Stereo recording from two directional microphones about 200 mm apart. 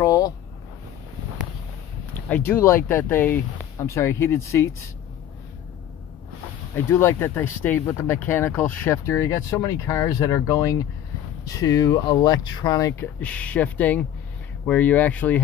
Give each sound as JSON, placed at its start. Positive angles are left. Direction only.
{"t": 0.0, "sound": "a sound", "side_deg": 15}
{"t": 2.1, "sound": "speech", "side_deg": 10}
{"t": 6.7, "sound": "speech", "side_deg": 10}